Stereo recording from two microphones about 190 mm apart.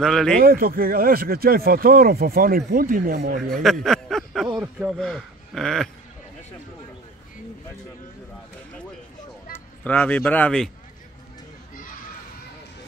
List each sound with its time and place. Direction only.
0.0 s speech: centre (ahead or behind)
0.4 s speech: 50° right (ahead or behind)
3.6 s a sound: centre (ahead or behind)
4.7 s speech: centre (ahead or behind)
9.5 s speech: 10° left (ahead or behind)